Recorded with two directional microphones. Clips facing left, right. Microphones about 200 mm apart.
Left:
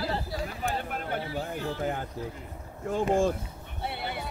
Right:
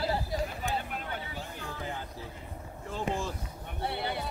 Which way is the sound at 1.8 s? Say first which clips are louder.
Left 7 dB; 50° left (ahead or behind).